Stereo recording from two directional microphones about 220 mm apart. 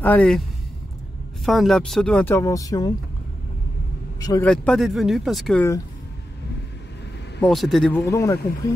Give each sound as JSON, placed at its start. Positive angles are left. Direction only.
{"t": 0.0, "sound": "speech", "side_deg": 5}
{"t": 1.4, "sound": "speech", "side_deg": 0}
{"t": 4.2, "sound": "speech", "side_deg": 15}
{"t": 4.5, "sound": "speech", "side_deg": 0}
{"t": 7.3, "sound": "speech", "side_deg": 5}
{"t": 8.0, "sound": "speech", "side_deg": 15}